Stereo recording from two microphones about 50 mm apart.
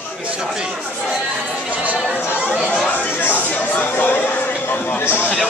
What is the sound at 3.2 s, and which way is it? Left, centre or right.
Chatter, left.